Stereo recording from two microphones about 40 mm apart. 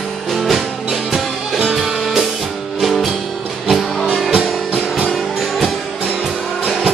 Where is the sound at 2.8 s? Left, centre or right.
Centre.